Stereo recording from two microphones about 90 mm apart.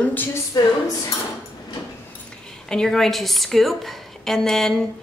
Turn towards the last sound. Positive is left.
turn(degrees=5)  # may be behind; listen again after turning